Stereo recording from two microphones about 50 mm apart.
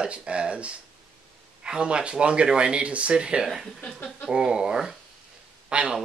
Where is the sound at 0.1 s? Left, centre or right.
Right.